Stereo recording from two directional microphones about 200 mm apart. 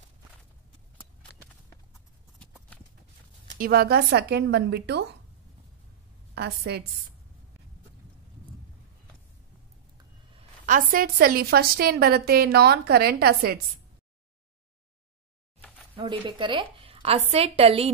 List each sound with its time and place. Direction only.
2.3 s clip-clop: 5° left (ahead or behind)
3.5 s a woman's voice: 50° right (ahead or behind)
6.3 s a woman's voice: 55° right (ahead or behind)
10.6 s a woman's voice: 40° right (ahead or behind)
15.9 s a sound: 25° right (ahead or behind)
16.3 s a woman's voice: 25° right (ahead or behind)